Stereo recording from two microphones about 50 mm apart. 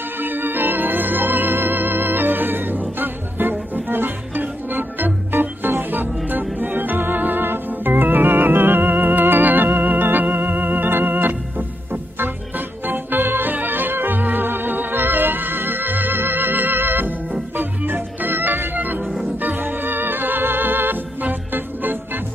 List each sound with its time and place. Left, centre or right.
0.2 s music: right
6.6 s organ: right
19.4 s music: right